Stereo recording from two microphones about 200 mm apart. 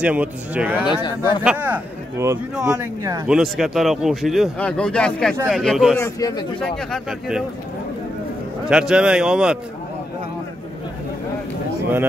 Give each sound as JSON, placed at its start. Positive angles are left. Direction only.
{"t": 0.0, "sound": "speech", "side_deg": -5}
{"t": 0.8, "sound": "speech", "side_deg": 20}
{"t": 1.4, "sound": "speech", "side_deg": -5}
{"t": 3.0, "sound": "speech", "side_deg": -15}
{"t": 3.3, "sound": "speech", "side_deg": 0}
{"t": 5.9, "sound": "a man's voice", "side_deg": 15}
{"t": 6.6, "sound": "speech", "side_deg": 0}
{"t": 8.6, "sound": "speech", "side_deg": -5}